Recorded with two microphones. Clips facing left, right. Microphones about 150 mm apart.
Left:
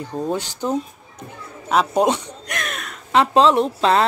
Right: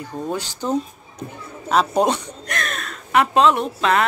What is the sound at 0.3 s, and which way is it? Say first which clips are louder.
Speech: left 1 dB; 20° left (ahead or behind).